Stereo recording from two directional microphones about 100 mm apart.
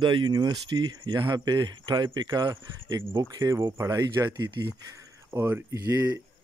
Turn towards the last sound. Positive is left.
turn(degrees=-20)  # may be behind; listen again after turning